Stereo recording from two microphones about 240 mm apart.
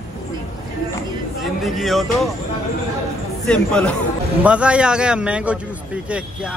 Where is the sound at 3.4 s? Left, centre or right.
Centre.